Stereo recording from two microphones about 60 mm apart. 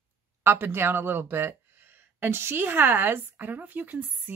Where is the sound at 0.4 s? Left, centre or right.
Right.